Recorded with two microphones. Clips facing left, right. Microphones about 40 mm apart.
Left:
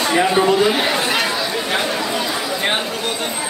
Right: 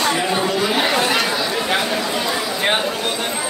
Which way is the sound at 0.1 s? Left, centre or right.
Centre.